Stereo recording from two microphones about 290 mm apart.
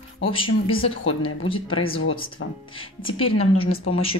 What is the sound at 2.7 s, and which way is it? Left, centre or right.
A woman's voice, centre.